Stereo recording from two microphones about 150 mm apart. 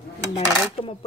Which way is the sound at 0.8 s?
40° left (ahead or behind).